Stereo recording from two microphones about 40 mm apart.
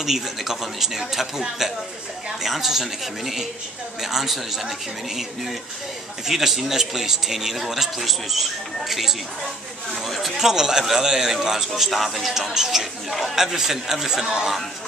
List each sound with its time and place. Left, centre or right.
0.0 s a man's voice: centre
2.4 s a man's voice: centre
10.3 s a man's voice: centre